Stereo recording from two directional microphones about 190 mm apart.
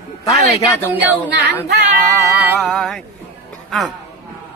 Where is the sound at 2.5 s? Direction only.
5° left (ahead or behind).